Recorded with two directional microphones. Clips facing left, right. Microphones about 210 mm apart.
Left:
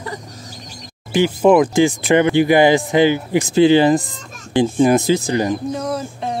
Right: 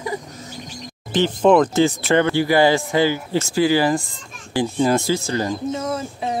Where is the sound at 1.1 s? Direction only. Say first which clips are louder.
Left 2 dB; 10° left (ahead or behind).